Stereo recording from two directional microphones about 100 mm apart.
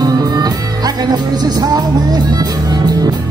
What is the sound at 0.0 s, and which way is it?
Music, 40° right (ahead or behind).